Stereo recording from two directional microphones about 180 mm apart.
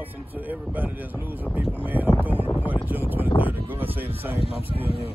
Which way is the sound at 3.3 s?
30° left (ahead or behind).